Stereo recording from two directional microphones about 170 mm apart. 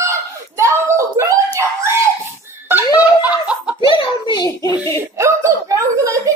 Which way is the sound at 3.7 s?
25° left (ahead or behind).